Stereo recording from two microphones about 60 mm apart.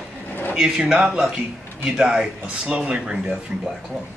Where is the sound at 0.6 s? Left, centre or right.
Centre.